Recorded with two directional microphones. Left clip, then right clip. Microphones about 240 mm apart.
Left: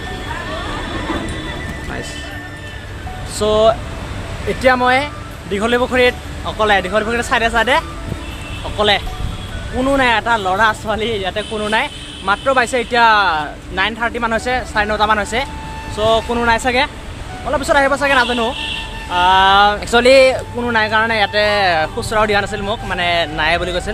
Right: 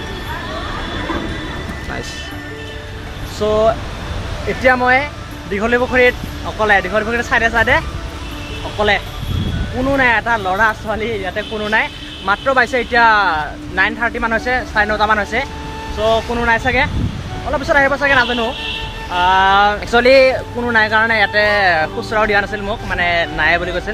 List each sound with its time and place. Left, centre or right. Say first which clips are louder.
3.3 s speech: left 1 dB; centre